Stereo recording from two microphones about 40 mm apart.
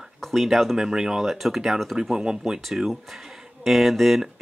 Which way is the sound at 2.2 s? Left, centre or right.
Right.